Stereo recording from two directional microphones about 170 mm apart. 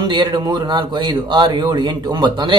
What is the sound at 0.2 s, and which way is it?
A man's voice, 25° right (ahead or behind).